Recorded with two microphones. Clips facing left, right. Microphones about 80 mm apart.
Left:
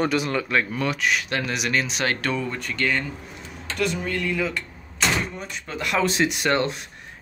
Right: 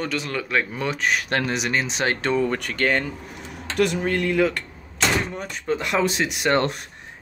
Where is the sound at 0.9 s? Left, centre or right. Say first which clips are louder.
Right 1 dB; right.